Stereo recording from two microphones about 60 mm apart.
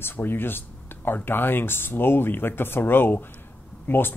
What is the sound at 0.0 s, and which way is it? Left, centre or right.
Speech, left.